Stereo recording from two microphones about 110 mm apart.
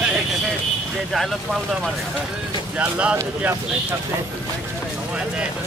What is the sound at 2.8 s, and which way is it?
Speech, 10° right (ahead or behind).